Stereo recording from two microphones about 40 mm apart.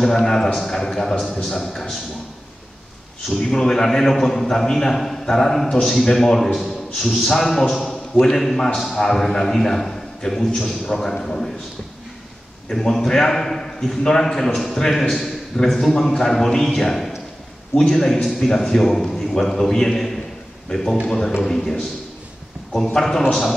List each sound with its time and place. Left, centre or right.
0.0 s a man's voice: centre
3.3 s a man's voice: centre
12.6 s a man's voice: centre
22.9 s a man's voice: centre